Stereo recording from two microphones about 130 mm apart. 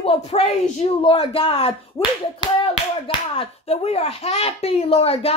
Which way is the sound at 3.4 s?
50° left (ahead or behind).